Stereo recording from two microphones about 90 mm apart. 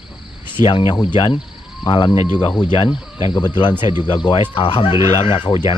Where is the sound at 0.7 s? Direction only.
75° left (ahead or behind).